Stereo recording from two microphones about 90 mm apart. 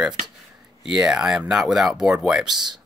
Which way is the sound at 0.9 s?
10° right (ahead or behind).